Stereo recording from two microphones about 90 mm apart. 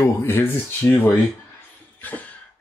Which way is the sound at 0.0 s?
25° left (ahead or behind).